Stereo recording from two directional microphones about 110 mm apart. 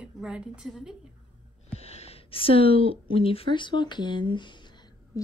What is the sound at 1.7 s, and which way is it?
Speech, 75° left (ahead or behind).